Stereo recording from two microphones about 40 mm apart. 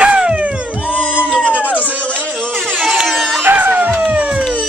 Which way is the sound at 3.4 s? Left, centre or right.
Right.